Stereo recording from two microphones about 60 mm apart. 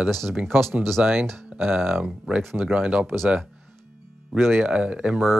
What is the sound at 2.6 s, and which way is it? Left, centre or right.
Speech, right.